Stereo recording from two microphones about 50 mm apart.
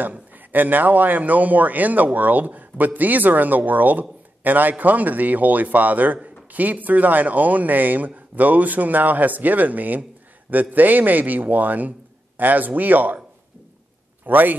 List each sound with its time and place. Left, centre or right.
0.0 s speech: right
14.2 s a man's voice: right